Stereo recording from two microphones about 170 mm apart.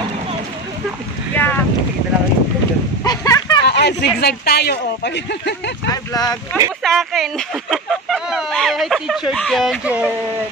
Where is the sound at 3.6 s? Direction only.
80° left.